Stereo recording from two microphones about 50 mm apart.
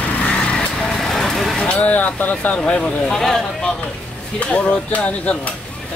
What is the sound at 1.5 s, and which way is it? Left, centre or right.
Speech, centre.